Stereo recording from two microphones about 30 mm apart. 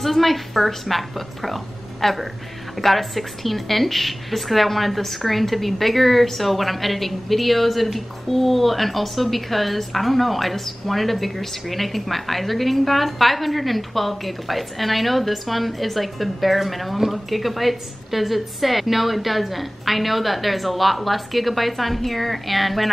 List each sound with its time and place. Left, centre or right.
0.0 s a woman's voice: centre